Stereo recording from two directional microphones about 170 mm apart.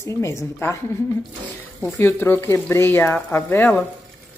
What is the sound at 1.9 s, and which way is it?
A woman's voice, 15° left (ahead or behind).